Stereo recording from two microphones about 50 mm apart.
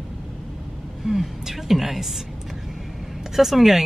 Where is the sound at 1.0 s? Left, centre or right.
Centre.